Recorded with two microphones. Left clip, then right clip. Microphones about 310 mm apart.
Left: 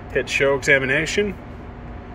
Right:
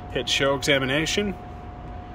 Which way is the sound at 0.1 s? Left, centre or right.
Centre.